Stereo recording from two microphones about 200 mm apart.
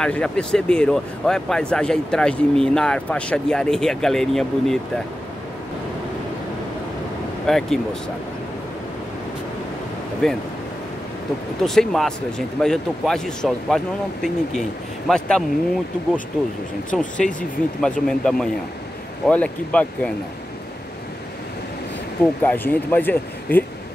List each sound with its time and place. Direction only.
0.0 s speech: 5° left (ahead or behind)
7.4 s speech: centre (ahead or behind)
10.2 s speech: centre (ahead or behind)
11.6 s speech: centre (ahead or behind)
17.2 s speech: 5° left (ahead or behind)
22.2 s speech: 10° left (ahead or behind)